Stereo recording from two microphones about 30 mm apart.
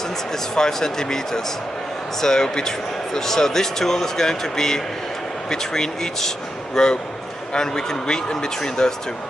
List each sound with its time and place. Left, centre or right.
0.6 s speech: centre